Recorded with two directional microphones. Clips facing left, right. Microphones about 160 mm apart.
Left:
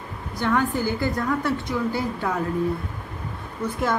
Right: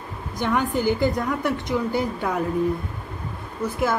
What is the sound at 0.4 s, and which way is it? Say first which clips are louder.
A woman's voice: even; 15° right (ahead or behind).